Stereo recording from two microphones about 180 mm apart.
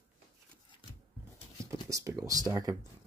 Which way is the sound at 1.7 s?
20° right (ahead or behind).